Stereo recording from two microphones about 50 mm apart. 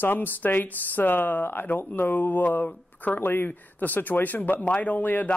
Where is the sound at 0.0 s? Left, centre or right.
Left.